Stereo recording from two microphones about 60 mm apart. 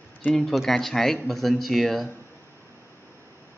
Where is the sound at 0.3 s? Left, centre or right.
Centre.